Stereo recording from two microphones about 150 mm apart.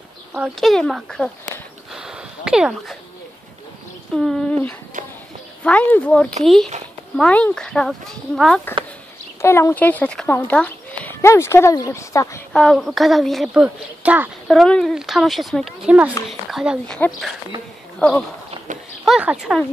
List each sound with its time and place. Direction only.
0.6 s a woman's voice: centre (ahead or behind)
1.9 s a sound: 5° right (ahead or behind)
4.1 s a woman's voice: centre (ahead or behind)
5.6 s a woman's voice: 10° left (ahead or behind)
9.4 s speech: 15° left (ahead or behind)
12.5 s a woman's voice: centre (ahead or behind)
14.5 s a woman's voice: 5° left (ahead or behind)
19.0 s a woman's voice: 5° right (ahead or behind)